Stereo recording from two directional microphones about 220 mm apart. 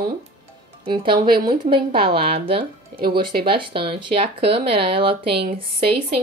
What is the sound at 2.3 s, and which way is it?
Speech, 25° right (ahead or behind).